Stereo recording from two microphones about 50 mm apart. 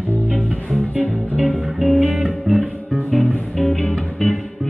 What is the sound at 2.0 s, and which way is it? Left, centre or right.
Music, centre.